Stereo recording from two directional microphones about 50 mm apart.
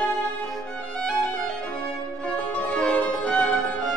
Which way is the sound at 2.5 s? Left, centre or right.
Left.